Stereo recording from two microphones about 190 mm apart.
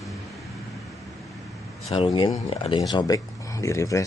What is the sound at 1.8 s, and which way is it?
Speech, 30° left (ahead or behind).